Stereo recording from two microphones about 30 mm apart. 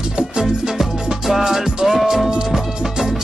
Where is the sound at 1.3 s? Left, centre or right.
Centre.